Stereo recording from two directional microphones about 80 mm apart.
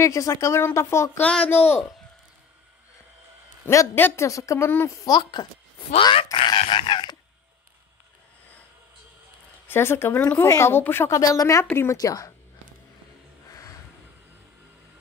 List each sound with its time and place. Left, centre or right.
0.0 s speech: left
1.2 s speech: centre
1.5 s speech: left
3.9 s speech: left
4.3 s speech: left
4.6 s speech: left
5.0 s dog: left
6.3 s dog: left
9.7 s speech: left
11.1 s speech: left
11.7 s speech: left
12.0 s speech: left